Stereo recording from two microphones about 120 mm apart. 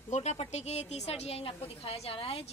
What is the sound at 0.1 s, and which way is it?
A woman's voice, 70° left (ahead or behind).